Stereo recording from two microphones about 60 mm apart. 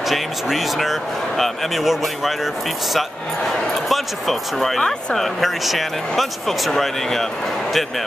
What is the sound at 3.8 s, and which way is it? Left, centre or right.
Speech, centre.